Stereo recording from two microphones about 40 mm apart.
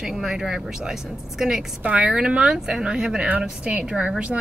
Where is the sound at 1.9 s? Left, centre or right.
Right.